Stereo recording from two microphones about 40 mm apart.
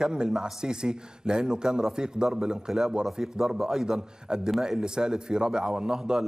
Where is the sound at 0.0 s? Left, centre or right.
Right.